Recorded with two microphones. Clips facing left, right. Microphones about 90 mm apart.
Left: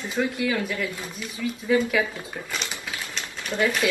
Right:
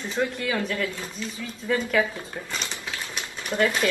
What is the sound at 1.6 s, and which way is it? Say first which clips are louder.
Speech: left 1 dB; 5° left (ahead or behind).